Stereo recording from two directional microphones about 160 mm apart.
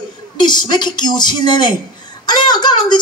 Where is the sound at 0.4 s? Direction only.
25° left (ahead or behind).